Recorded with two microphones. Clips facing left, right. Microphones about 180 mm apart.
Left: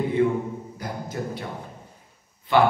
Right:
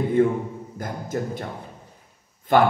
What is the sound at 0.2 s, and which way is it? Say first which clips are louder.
A man's voice: right 2 dB; 45° right (ahead or behind).